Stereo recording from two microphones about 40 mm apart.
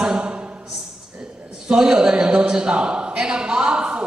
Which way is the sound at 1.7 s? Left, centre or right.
Centre.